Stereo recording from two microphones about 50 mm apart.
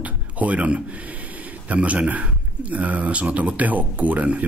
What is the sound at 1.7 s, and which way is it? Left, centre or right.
Speech, right.